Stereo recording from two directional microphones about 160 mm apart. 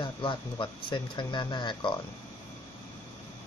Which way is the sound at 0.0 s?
30° left (ahead or behind).